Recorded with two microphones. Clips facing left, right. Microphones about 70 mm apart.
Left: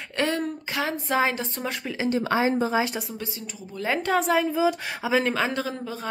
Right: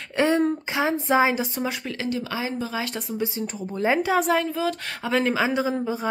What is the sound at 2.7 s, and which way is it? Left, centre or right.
Speech, centre.